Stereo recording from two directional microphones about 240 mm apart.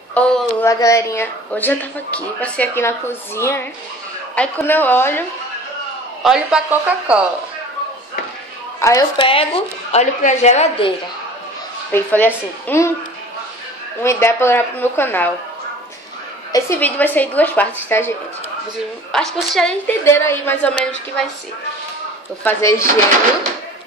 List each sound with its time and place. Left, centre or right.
0.1 s speech: centre
6.2 s a woman's voice: centre
8.7 s a woman's voice: centre
11.9 s a woman's voice: centre
14.0 s speech: centre
16.5 s speech: centre
19.1 s a woman's voice: centre
22.4 s speech: centre